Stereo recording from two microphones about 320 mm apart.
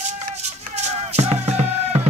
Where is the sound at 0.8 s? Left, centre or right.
Centre.